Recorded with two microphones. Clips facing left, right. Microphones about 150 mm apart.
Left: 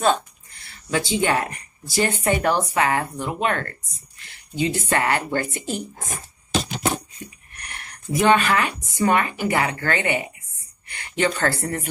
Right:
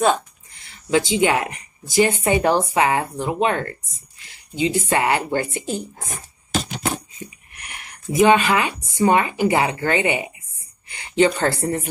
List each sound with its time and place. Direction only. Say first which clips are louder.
0.0 s speech: right 2 dB; 15° right (ahead or behind)
7.5 s speech: even; 10° right (ahead or behind)